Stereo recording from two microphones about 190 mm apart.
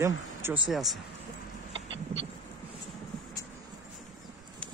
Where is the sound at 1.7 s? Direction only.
90° right.